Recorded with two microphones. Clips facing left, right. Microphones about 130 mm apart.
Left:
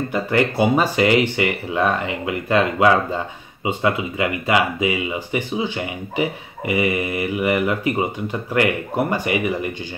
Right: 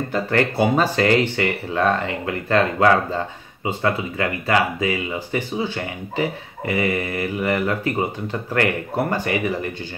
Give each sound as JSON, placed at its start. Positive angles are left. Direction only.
{"t": 0.1, "sound": "speech", "side_deg": 10}